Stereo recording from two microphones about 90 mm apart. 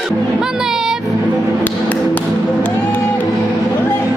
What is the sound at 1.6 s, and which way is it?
Tap, 15° left (ahead or behind).